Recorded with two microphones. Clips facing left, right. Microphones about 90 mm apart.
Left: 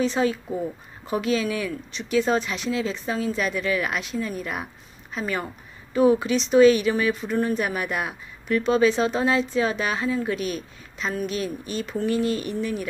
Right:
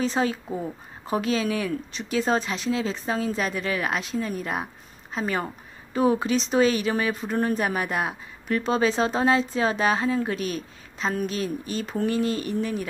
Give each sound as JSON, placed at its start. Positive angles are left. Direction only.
{"t": 0.0, "sound": "speech", "side_deg": -35}